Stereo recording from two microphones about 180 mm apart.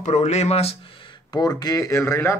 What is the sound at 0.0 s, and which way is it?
Speech, 40° left (ahead or behind).